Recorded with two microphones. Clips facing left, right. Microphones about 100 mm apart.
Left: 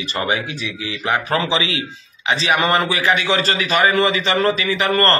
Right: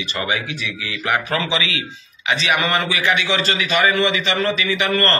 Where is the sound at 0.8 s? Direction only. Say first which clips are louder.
Left 1 dB; 20° left (ahead or behind); by 5.2 s 40° left (ahead or behind).